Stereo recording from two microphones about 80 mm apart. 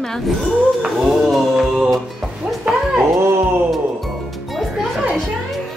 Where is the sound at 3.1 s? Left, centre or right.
Right.